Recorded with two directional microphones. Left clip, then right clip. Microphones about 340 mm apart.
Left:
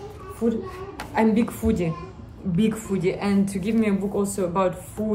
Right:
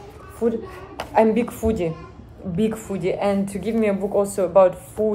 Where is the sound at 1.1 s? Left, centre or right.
Centre.